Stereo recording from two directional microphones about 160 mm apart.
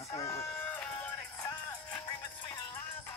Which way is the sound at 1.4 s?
15° left (ahead or behind).